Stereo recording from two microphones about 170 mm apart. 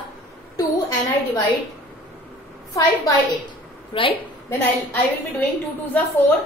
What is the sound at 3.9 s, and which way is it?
Speech, 30° left (ahead or behind).